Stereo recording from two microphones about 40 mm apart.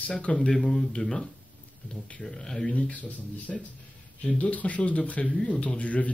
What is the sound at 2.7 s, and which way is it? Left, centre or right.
Speech, left.